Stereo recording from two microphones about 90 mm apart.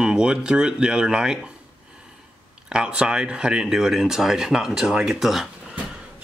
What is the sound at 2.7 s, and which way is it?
Speech, 10° right (ahead or behind).